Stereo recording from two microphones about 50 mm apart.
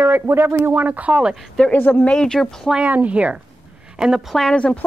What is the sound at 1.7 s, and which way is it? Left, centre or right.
Speech, left.